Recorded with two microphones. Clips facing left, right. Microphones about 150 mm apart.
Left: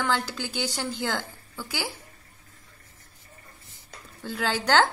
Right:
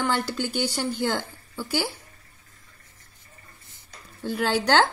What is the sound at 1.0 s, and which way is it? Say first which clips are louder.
Speech: right 3 dB; 15° right (ahead or behind).